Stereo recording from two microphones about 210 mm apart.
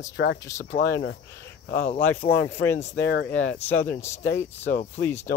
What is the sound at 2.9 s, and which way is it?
Speech, 50° left (ahead or behind).